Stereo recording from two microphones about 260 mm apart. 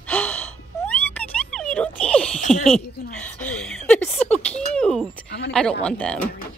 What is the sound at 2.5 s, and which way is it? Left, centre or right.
A woman's voice, centre.